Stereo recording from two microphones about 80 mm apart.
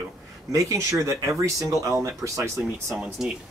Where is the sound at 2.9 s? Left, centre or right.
Centre.